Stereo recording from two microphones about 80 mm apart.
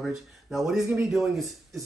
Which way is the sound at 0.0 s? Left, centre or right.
Centre.